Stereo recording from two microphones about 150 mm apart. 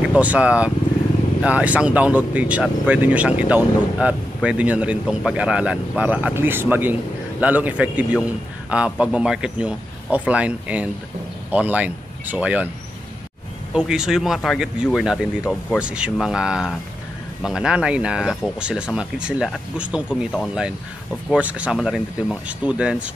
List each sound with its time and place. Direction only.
0.1 s speech: 10° right (ahead or behind)
13.7 s speech: 5° right (ahead or behind)
21.3 s speech: 10° right (ahead or behind)